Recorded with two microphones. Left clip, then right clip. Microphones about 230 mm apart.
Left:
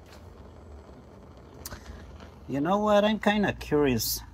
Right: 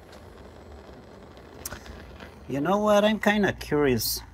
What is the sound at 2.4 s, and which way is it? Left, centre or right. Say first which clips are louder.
Speech: right 2 dB; centre.